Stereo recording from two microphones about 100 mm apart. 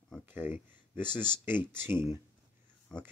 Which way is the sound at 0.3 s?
20° right (ahead or behind).